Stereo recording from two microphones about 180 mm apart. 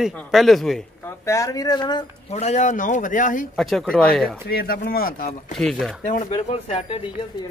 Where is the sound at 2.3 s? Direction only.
40° left (ahead or behind).